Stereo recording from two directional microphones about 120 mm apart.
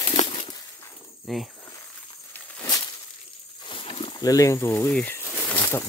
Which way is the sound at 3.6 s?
45° left (ahead or behind).